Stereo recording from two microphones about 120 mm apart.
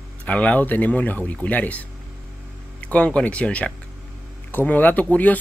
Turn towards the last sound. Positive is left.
turn(degrees=15)  # may be behind; listen again after turning